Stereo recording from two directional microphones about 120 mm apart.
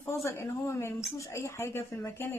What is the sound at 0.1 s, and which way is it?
Speech, 25° left (ahead or behind).